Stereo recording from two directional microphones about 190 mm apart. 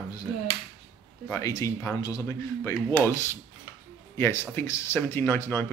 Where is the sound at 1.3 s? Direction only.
15° left (ahead or behind).